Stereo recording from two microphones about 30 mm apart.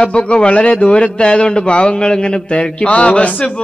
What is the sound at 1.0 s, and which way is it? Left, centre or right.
A man's voice, left.